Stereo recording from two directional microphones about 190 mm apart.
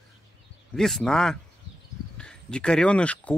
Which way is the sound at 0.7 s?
Centre (ahead or behind).